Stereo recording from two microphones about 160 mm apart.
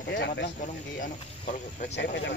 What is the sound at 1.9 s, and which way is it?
Speech, 90° left.